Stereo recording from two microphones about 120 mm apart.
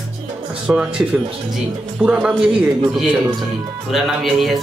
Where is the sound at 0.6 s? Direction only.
5° right (ahead or behind).